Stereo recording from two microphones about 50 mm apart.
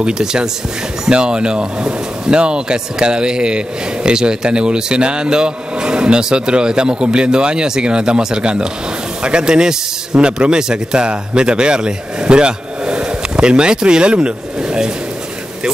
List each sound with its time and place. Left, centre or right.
0.0 s a man's voice: centre